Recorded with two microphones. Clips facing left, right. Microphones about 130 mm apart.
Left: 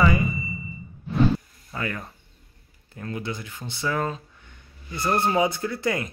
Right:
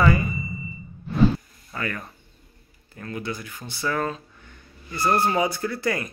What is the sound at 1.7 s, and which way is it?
Speech, 20° left (ahead or behind).